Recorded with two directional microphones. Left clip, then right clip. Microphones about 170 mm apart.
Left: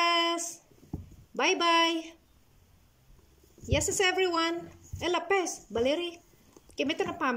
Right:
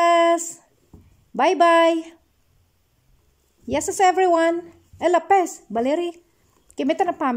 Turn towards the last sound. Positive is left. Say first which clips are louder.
# right 9 dB
turn(degrees=-40)  # may be behind; listen again after turning